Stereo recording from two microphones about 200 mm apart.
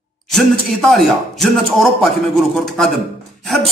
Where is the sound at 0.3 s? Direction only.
Centre (ahead or behind).